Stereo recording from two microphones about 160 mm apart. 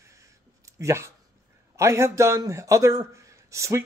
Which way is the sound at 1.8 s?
20° right (ahead or behind).